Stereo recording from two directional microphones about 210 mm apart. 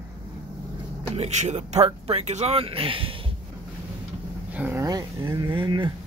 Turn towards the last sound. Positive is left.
turn(degrees=-20)  # may be behind; listen again after turning